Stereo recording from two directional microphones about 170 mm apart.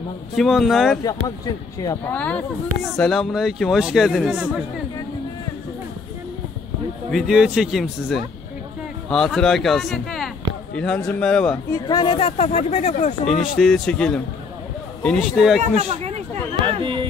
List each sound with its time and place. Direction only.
0.4 s speech: centre (ahead or behind)
1.2 s speech: 20° left (ahead or behind)
2.0 s speech: 10° left (ahead or behind)
7.1 s speech: centre (ahead or behind)
11.7 s speech: 25° left (ahead or behind); by 13.5 s 45° left (ahead or behind)
13.6 s speech: centre (ahead or behind)
15.6 s speech: 40° right (ahead or behind)
16.6 s a sound: 30° right (ahead or behind)